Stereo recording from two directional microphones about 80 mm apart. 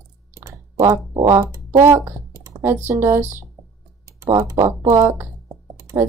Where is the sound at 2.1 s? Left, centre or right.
Right.